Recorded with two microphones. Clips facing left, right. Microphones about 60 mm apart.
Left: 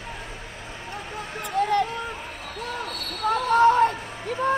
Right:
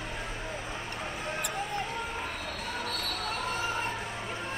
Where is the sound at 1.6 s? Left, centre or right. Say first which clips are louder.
Left 18 dB; left.